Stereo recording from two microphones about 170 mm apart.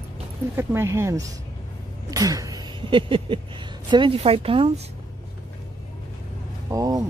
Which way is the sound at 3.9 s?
30° right (ahead or behind).